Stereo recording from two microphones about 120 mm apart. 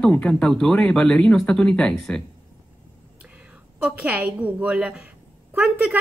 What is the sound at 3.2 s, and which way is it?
A woman's voice, 10° right (ahead or behind).